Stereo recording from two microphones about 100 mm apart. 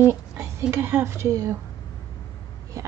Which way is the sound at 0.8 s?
25° right (ahead or behind).